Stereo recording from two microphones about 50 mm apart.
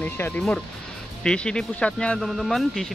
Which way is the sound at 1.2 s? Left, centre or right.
Centre.